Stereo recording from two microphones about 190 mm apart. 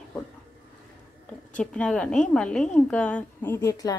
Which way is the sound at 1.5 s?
5° left (ahead or behind).